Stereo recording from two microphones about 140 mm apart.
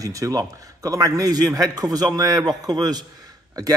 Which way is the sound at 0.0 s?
25° right (ahead or behind).